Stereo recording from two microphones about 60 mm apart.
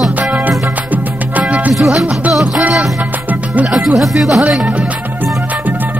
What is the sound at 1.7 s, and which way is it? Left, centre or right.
Music, centre.